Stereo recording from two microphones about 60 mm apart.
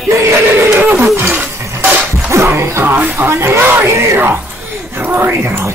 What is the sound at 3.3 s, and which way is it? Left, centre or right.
Speech, right.